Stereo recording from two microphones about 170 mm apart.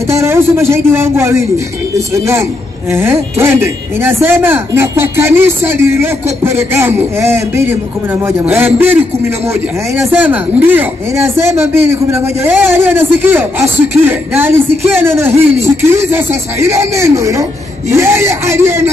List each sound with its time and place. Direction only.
0.1 s speech: 15° right (ahead or behind)
9.9 s speech: 10° right (ahead or behind)